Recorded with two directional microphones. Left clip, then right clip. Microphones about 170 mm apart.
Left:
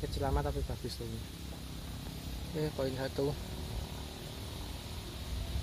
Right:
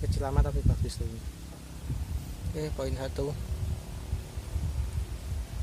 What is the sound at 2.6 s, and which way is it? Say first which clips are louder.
Speech: right 1 dB; centre (ahead or behind).